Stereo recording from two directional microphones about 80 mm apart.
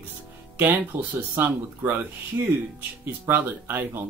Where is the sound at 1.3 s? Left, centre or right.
Right.